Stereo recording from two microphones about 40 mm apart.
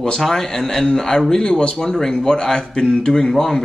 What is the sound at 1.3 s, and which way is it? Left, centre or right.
A man's voice, left.